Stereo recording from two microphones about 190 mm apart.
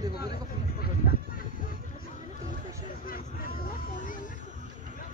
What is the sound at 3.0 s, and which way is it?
Vehicle, 50° left (ahead or behind).